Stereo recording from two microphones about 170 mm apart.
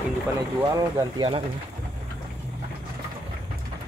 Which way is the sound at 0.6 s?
20° right (ahead or behind).